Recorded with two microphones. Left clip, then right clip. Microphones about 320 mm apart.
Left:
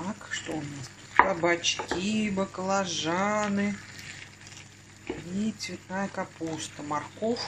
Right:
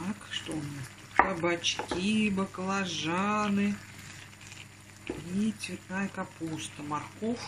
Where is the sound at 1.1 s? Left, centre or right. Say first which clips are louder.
Left 4 dB; centre.